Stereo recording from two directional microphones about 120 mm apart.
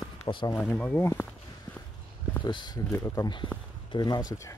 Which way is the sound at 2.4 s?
40° left (ahead or behind).